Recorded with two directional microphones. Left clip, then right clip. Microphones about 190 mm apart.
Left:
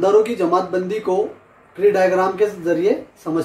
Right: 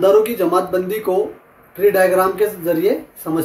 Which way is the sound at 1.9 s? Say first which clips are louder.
Right 2 dB; centre (ahead or behind).